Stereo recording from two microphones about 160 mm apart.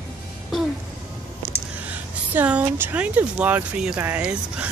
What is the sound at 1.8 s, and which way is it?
Speech, 10° right (ahead or behind).